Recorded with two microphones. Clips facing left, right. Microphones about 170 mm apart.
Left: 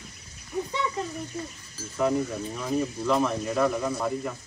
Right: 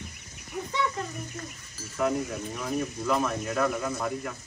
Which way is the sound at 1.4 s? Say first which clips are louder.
Left 6 dB; 10° left (ahead or behind).